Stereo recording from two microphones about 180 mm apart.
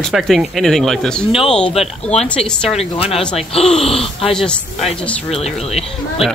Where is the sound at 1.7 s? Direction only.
35° left (ahead or behind).